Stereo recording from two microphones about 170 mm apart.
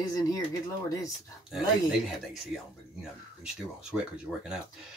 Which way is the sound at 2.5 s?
5° right (ahead or behind).